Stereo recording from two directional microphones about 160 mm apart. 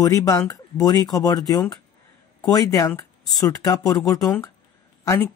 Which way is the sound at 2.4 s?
25° left (ahead or behind).